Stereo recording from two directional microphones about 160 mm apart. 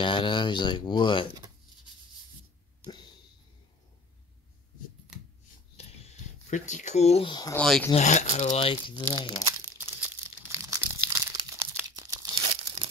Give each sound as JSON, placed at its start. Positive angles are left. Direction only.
{"t": 0.0, "sound": "speech", "side_deg": 30}
{"t": 2.9, "sound": "a sound", "side_deg": 25}
{"t": 5.8, "sound": "a sound", "side_deg": 40}
{"t": 7.5, "sound": "speech", "side_deg": 5}
{"t": 7.9, "sound": "speech", "side_deg": 45}
{"t": 9.5, "sound": "crumpling", "side_deg": -15}